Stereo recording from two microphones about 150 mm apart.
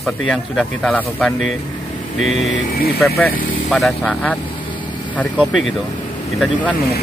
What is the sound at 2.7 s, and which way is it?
Speech, 90° left.